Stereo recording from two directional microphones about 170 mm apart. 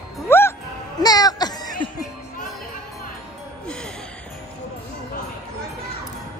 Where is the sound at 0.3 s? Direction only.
15° left (ahead or behind).